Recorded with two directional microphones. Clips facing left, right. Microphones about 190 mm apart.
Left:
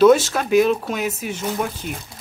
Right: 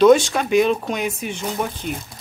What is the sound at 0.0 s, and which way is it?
Speech, 5° left (ahead or behind).